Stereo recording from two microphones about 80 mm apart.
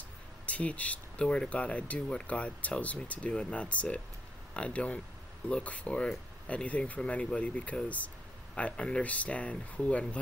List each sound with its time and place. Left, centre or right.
0.5 s speech: centre